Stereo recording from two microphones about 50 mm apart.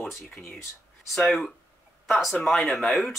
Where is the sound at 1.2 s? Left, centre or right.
Centre.